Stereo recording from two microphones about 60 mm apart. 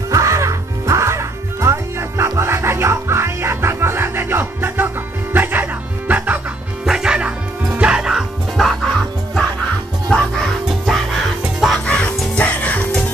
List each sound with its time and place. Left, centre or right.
0.1 s music: right
6.9 s bow-wow: centre
10.0 s music: centre
11.8 s music: centre